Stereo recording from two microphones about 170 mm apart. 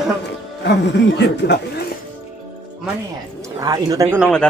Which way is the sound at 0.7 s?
80° left.